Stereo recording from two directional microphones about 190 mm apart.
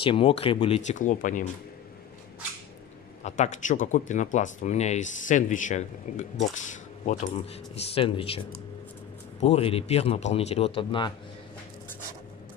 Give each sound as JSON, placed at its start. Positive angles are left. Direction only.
{"t": 0.0, "sound": "speech", "side_deg": 30}
{"t": 3.3, "sound": "speech", "side_deg": 40}
{"t": 9.4, "sound": "speech", "side_deg": 30}